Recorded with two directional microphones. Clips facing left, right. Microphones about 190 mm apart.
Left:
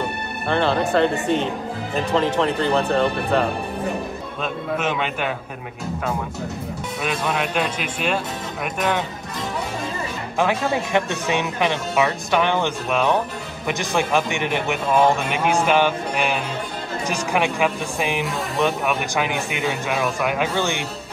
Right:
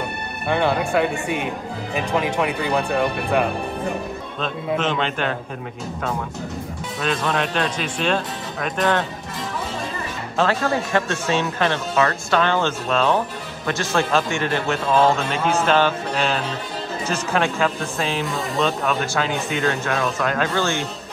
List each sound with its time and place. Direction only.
0.5 s speech: 10° right (ahead or behind)
4.4 s a man's voice: 10° left (ahead or behind)
7.0 s a man's voice: 15° left (ahead or behind)
10.4 s a man's voice: 15° left (ahead or behind)